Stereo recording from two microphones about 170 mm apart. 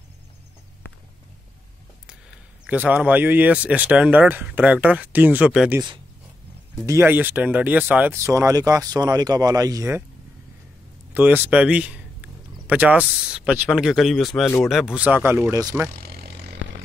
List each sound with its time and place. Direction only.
2.6 s speech: 10° right (ahead or behind)
6.9 s speech: 15° right (ahead or behind)
11.1 s speech: 10° right (ahead or behind)
15.9 s vehicle: 65° right (ahead or behind)